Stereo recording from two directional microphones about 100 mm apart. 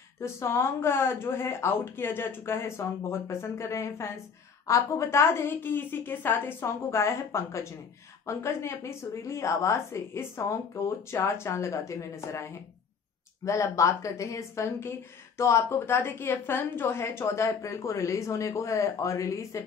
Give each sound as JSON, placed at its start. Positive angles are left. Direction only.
{"t": 0.2, "sound": "a woman's voice", "side_deg": 30}